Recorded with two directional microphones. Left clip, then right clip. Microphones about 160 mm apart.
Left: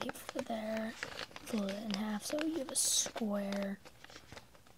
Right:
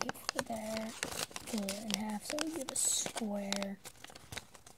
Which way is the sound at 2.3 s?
20° right (ahead or behind).